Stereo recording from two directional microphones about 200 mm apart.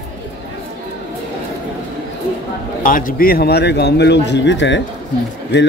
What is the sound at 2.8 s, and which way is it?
A man's voice, 45° left (ahead or behind).